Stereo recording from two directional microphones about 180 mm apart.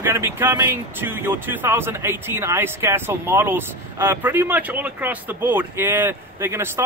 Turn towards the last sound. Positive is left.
turn(degrees=-15)  # may be behind; listen again after turning